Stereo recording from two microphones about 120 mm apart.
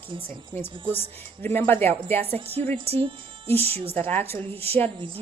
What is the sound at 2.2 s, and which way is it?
Speech, 55° right (ahead or behind).